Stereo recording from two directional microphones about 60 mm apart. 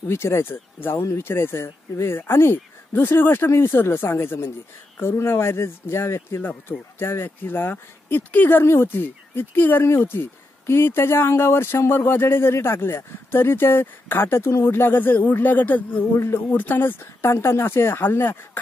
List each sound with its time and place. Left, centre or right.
0.1 s speech: left